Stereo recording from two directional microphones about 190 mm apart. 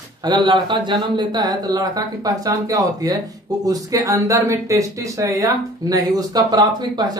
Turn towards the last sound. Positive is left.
turn(degrees=-20)  # may be behind; listen again after turning